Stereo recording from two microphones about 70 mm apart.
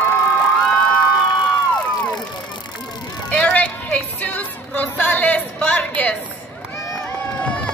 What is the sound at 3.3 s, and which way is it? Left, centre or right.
Music, centre.